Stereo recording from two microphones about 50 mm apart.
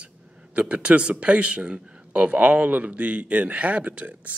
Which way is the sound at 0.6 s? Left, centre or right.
Right.